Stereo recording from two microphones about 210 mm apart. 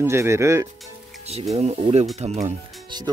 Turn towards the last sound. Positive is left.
turn(degrees=-20)  # may be behind; listen again after turning